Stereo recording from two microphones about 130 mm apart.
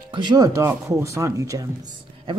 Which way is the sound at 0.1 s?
35° right (ahead or behind).